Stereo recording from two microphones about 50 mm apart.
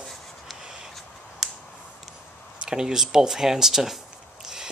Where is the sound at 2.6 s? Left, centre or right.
Centre.